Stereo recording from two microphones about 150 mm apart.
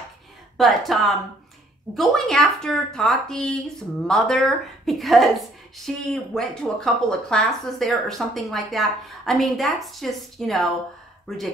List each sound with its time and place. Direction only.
0.6 s speech: centre (ahead or behind)